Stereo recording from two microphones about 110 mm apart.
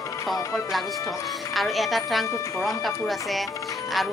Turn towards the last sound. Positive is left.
turn(degrees=0)  # may be behind; listen again after turning